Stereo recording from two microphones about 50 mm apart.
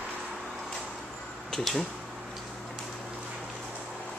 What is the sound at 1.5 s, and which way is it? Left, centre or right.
Speech, centre.